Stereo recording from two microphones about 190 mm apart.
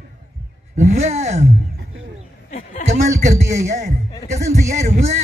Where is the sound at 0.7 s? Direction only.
35° right (ahead or behind).